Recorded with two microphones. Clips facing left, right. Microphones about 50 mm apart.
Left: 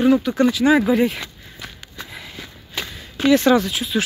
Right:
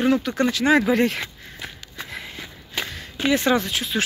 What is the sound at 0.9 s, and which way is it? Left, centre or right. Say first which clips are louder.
Speech: left 2 dB; right.